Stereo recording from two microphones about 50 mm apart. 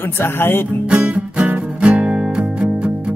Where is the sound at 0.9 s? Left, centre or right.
Right.